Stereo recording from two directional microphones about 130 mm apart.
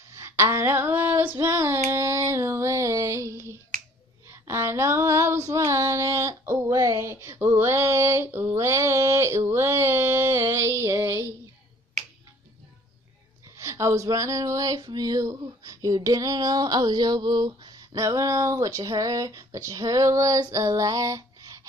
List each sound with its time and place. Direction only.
0.1 s female singing: 20° right (ahead or behind)
1.9 s a sound: 20° right (ahead or behind)
4.3 s female singing: 20° right (ahead or behind)
13.6 s speech: 20° right (ahead or behind)